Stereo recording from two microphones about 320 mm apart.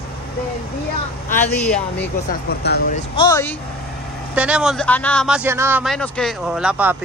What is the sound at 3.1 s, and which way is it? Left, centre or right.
Speech, centre.